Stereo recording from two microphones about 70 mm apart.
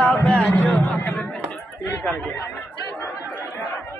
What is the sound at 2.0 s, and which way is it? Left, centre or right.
Chatter, left.